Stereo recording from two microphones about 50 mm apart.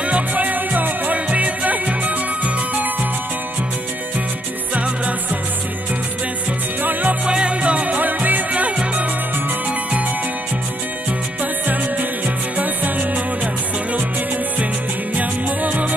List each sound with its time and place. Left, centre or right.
0.0 s music: right
4.7 s music: right
6.8 s music: right
7.2 s music: right
11.6 s music: right
15.1 s music: right